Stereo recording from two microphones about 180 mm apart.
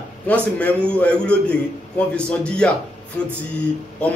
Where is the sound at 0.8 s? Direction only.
5° left (ahead or behind).